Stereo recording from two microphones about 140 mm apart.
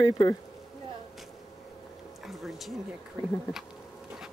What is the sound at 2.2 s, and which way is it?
Speech, centre (ahead or behind).